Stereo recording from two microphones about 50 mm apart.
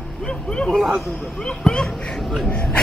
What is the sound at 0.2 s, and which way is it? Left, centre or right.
Speech, centre.